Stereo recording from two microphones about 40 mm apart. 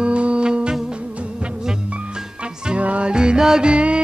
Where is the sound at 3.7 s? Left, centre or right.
Right.